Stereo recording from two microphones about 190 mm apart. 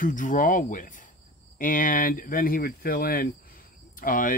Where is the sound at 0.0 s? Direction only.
45° left (ahead or behind).